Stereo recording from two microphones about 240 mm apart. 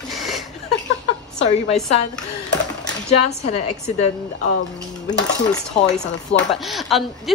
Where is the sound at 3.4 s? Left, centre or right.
Left.